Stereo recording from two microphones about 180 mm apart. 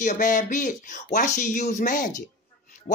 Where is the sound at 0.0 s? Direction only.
45° left (ahead or behind).